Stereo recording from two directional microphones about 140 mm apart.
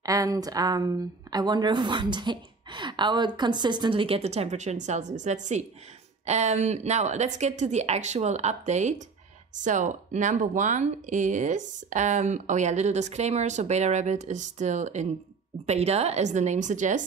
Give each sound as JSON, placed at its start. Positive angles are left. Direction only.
{"t": 0.0, "sound": "a woman's voice", "side_deg": -25}